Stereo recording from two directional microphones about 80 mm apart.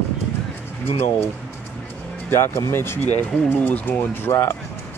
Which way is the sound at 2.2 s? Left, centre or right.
Left.